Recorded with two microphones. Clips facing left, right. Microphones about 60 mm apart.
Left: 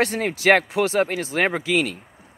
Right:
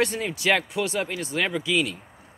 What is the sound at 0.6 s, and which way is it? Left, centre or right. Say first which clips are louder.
Speech: left 6 dB; left.